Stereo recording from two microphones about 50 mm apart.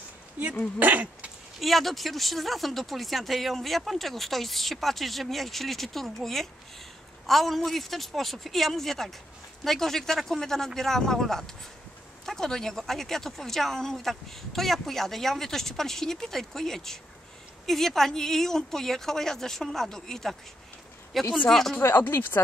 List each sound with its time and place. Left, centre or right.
0.7 s speech: right
1.6 s speech: centre
22.1 s speech: left